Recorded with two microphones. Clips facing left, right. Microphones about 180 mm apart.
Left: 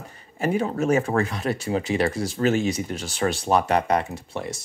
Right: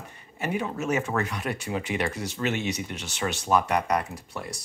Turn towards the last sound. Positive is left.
turn(degrees=25)  # may be behind; listen again after turning